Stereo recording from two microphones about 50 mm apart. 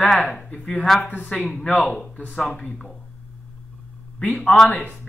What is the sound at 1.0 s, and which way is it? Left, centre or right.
Speech, left.